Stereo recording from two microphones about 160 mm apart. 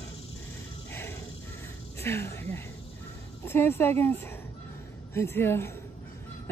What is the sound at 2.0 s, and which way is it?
Speech, 15° left (ahead or behind).